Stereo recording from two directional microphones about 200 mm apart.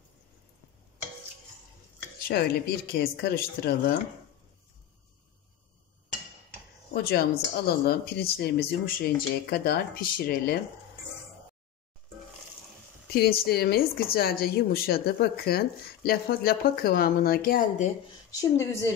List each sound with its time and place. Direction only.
2.2 s speech: 55° left (ahead or behind)
6.9 s speech: 50° left (ahead or behind)
13.1 s speech: 50° left (ahead or behind)